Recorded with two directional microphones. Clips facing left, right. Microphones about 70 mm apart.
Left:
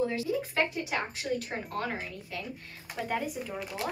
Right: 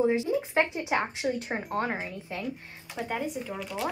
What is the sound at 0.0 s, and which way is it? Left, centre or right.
Speech, right.